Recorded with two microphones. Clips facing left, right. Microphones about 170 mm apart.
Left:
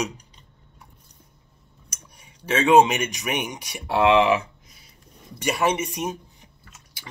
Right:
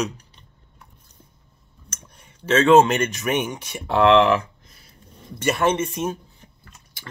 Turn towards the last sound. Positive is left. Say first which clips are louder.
# right 3 dB
turn(degrees=15)  # may be behind; listen again after turning